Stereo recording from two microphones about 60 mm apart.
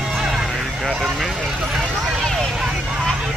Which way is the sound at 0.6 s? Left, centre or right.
Centre.